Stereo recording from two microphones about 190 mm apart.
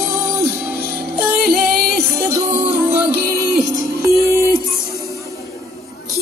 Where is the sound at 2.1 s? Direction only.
15° right (ahead or behind).